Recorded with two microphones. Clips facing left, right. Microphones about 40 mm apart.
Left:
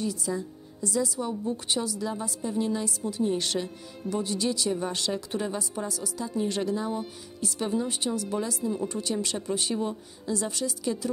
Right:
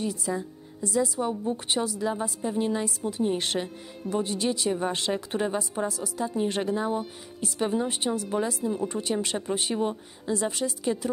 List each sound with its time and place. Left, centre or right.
0.0 s a woman's voice: right